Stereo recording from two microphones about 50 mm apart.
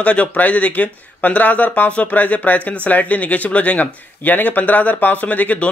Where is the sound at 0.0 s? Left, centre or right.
Left.